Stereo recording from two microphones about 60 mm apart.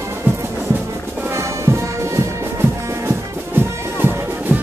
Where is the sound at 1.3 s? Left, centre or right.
Right.